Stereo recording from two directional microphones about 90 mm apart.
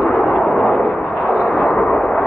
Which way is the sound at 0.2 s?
5° left (ahead or behind).